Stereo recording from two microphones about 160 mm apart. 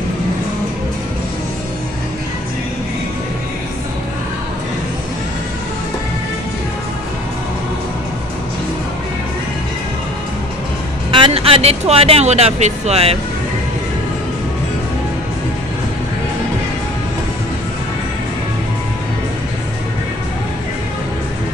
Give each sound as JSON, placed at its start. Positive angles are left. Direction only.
{"t": 11.1, "sound": "speech", "side_deg": -30}